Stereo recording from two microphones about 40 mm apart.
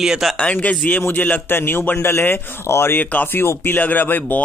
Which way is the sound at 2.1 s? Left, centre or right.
Left.